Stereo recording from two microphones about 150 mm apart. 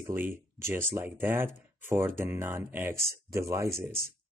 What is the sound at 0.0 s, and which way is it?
Speech, 15° right (ahead or behind).